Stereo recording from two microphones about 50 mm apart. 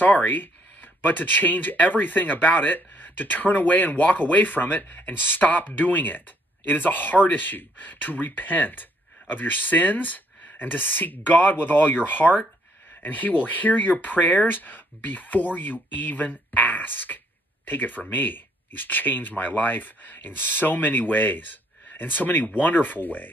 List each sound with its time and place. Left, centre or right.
0.0 s speech: left